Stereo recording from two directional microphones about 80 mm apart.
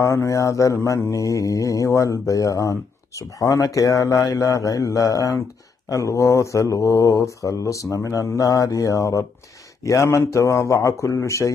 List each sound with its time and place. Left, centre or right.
0.0 s mantra: left